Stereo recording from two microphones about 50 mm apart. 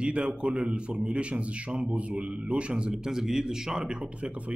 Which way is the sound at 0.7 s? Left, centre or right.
Centre.